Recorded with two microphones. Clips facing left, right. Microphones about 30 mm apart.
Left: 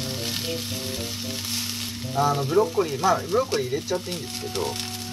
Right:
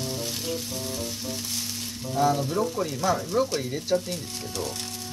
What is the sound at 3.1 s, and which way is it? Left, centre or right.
Speech, left.